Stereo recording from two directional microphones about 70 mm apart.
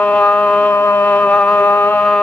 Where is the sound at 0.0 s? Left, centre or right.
Left.